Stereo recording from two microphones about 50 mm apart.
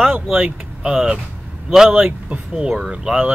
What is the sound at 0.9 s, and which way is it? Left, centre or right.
Speech, centre.